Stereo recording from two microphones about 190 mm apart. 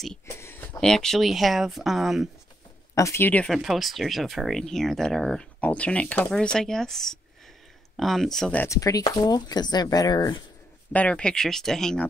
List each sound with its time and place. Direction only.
0.4 s speech: 10° left (ahead or behind)
2.9 s speech: 15° left (ahead or behind)
10.9 s speech: 5° left (ahead or behind)